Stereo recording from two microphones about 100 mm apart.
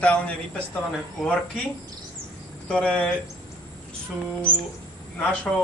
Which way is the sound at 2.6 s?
10° left (ahead or behind).